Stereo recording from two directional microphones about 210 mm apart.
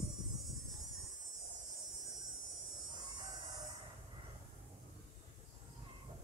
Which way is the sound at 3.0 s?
20° right (ahead or behind).